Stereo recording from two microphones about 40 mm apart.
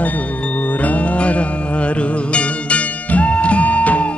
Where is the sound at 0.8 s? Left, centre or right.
Left.